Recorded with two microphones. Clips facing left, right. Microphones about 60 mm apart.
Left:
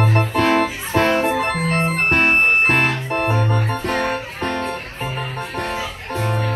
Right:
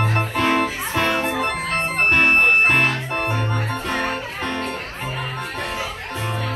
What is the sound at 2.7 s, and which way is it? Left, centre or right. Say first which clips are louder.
Music: left 1 dB; left.